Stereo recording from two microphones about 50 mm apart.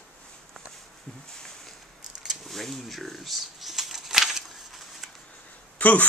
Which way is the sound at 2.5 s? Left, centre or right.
Centre.